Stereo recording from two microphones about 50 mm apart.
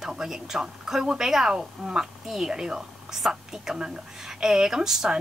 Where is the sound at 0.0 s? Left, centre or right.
Centre.